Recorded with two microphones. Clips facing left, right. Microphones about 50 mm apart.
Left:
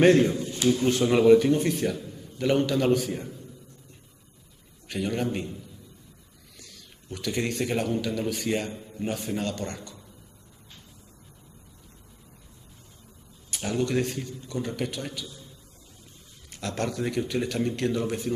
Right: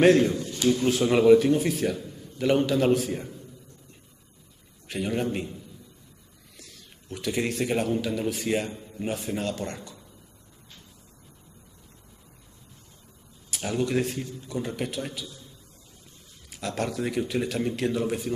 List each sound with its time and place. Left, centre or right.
0.0 s a man's voice: centre
0.4 s a sound: centre
0.7 s a man's voice: centre
4.8 s a man's voice: centre
13.5 s a man's voice: centre
16.4 s a man's voice: centre